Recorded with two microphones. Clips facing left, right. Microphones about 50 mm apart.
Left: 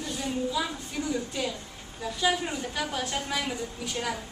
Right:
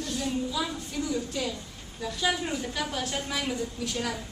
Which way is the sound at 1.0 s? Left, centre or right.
Centre.